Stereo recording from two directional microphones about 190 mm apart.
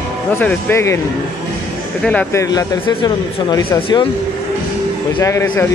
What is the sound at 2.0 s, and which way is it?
Speech, 10° left (ahead or behind).